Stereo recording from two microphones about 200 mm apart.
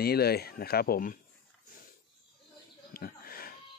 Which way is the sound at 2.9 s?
45° left (ahead or behind).